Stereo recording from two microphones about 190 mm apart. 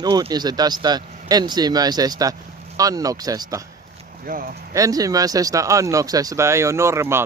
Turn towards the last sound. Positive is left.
turn(degrees=-15)  # may be behind; listen again after turning